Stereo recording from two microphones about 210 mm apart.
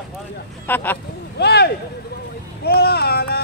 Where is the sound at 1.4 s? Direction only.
50° left (ahead or behind).